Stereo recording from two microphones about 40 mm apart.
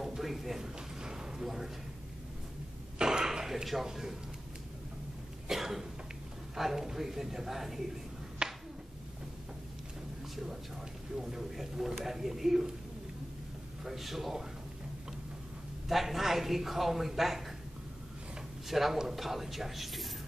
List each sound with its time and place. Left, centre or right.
0.2 s speech: centre
0.6 s a sound: centre
3.0 s a sound: centre
3.6 s a woman's voice: centre
5.5 s cough: centre
6.5 s a woman's voice: centre
8.4 s a sound: right
10.3 s a woman's voice: centre
13.8 s speech: centre
15.9 s speech: centre
18.7 s speech: centre